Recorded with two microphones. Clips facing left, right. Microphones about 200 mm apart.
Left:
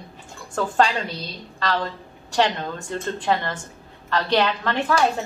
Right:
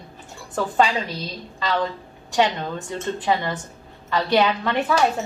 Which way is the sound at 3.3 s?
5° right (ahead or behind).